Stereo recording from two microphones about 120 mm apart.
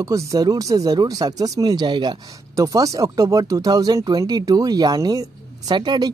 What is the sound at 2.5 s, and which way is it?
Speech, 30° right (ahead or behind).